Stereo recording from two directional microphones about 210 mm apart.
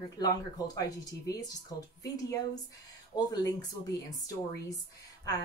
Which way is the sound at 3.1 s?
15° left (ahead or behind).